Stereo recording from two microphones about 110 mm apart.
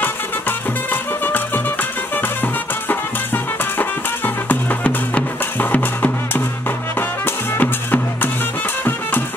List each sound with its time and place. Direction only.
1.2 s music: 15° left (ahead or behind)